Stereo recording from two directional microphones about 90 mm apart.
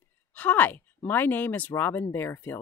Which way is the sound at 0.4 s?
20° left (ahead or behind).